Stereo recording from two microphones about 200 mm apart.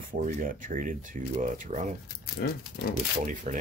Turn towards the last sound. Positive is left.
turn(degrees=-40)  # may be behind; listen again after turning